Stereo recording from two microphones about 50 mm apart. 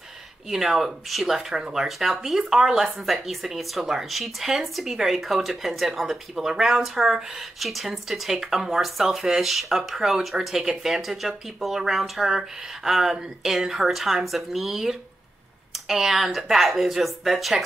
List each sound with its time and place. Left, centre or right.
0.5 s speech: centre